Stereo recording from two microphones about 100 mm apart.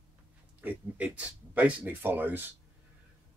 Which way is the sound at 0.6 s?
15° right (ahead or behind).